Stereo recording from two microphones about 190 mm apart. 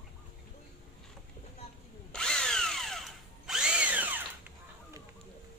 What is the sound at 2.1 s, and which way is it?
Drill, 5° left (ahead or behind).